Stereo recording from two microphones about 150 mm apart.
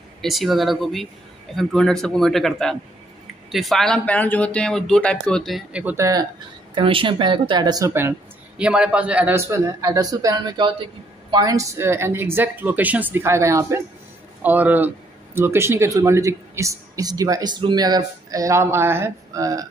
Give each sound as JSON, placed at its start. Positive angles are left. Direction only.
{"t": 0.2, "sound": "speech", "side_deg": 0}
{"t": 5.9, "sound": "speech", "side_deg": -20}
{"t": 6.7, "sound": "a woman's voice", "side_deg": -35}
{"t": 7.9, "sound": "speech", "side_deg": -15}